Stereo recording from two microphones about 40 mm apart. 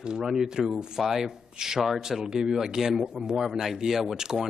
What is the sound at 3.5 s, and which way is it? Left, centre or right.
A man's voice, centre.